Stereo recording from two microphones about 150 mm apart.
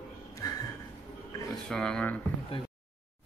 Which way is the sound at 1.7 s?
5° left (ahead or behind).